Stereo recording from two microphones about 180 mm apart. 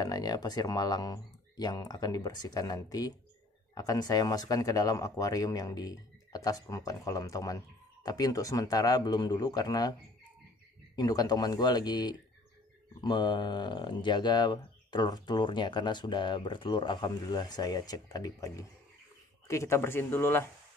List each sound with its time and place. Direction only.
0.0 s speech: 20° left (ahead or behind)
11.0 s speech: 20° left (ahead or behind)